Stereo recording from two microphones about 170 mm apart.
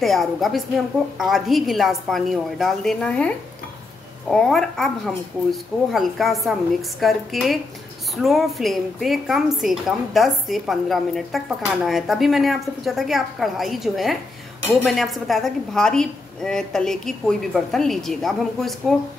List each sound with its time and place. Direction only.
0.0 s a woman's voice: centre (ahead or behind)